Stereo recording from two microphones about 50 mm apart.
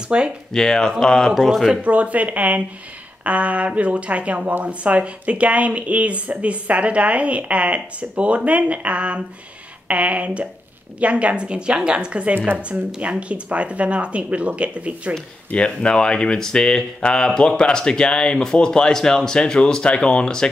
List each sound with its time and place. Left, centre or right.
0.1 s speech: right
0.5 s speech: centre
1.4 s speech: centre
1.8 s speech: right
15.1 s speech: left